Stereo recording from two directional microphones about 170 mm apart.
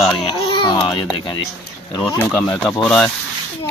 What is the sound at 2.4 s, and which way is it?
Speech, 5° left (ahead or behind).